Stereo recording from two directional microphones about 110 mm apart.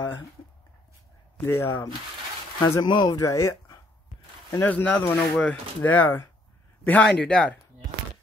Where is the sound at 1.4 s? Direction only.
20° left (ahead or behind).